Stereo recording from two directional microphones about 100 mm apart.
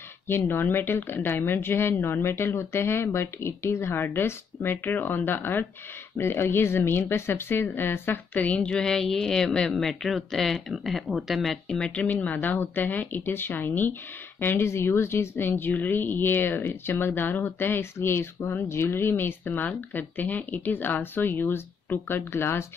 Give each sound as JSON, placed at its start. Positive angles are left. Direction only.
{"t": 0.3, "sound": "a woman's voice", "side_deg": 20}